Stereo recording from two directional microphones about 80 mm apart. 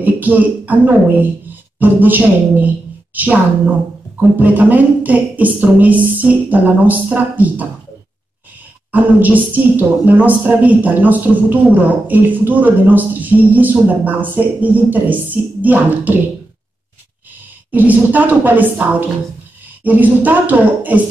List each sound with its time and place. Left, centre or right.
0.0 s a man's voice: right
8.9 s a man's voice: right
17.6 s a man's voice: right